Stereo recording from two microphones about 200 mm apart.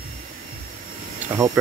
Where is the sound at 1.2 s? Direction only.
15° right (ahead or behind).